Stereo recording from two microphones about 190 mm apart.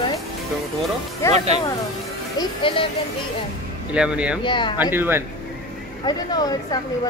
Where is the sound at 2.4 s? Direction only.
25° left (ahead or behind).